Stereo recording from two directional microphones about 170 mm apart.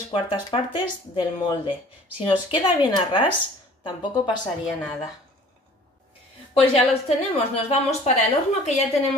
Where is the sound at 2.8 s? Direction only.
30° left (ahead or behind).